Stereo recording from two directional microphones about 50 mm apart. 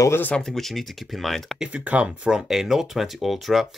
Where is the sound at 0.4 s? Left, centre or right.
Centre.